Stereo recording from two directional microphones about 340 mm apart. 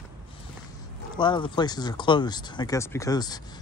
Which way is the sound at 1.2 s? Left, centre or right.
Centre.